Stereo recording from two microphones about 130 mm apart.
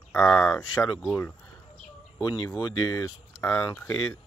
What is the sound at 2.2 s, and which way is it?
Speech, 30° left (ahead or behind).